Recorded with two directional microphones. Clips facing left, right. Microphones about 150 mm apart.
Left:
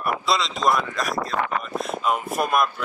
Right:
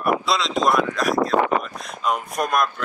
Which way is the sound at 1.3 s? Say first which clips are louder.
Right 5 dB; 20° right (ahead or behind).